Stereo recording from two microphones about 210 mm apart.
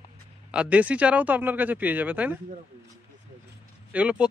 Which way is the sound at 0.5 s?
5° right (ahead or behind).